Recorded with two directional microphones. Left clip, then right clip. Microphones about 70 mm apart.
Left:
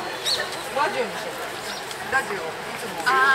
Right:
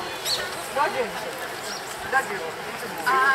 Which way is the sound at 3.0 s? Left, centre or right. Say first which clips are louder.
Left 2 dB; centre.